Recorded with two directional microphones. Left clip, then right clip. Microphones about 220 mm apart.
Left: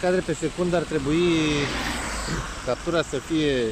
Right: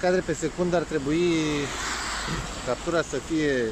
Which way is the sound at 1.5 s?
40° left (ahead or behind).